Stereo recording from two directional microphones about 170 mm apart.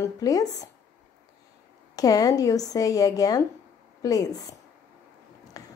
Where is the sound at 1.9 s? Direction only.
20° left (ahead or behind).